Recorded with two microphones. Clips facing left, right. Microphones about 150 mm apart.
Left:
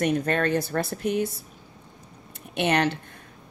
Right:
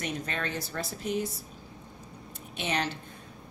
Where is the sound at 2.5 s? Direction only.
65° left (ahead or behind).